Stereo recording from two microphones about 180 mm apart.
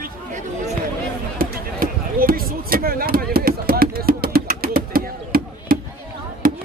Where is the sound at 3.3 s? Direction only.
55° right (ahead or behind).